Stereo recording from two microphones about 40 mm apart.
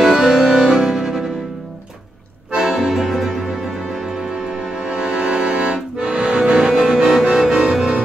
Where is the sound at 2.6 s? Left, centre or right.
Centre.